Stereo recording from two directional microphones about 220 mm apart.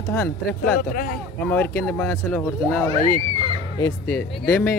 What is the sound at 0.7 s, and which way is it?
Speech, 40° left (ahead or behind).